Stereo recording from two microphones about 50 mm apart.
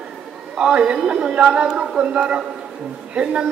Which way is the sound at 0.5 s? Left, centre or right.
Centre.